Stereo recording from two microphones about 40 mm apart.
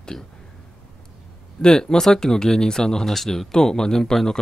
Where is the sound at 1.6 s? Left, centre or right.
Centre.